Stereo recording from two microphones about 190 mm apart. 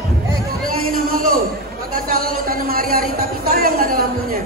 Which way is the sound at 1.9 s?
50° right (ahead or behind).